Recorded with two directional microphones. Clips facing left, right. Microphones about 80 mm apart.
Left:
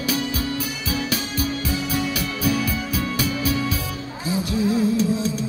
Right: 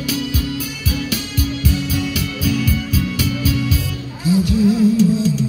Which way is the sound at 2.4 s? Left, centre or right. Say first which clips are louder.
Right 3 dB; left.